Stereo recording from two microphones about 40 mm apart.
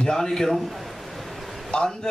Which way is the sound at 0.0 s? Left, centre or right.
Centre.